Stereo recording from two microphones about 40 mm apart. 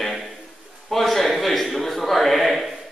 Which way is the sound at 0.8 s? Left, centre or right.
Centre.